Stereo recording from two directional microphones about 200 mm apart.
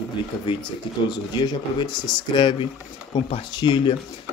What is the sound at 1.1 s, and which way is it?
Speech, 20° left (ahead or behind).